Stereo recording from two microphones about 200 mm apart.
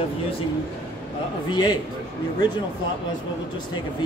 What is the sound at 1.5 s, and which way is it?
Speech, 20° left (ahead or behind).